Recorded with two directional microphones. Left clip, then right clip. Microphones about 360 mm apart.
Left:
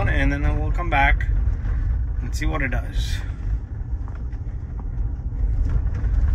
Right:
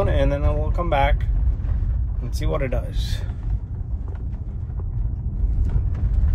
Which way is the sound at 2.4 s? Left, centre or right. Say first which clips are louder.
Right 1 dB; centre.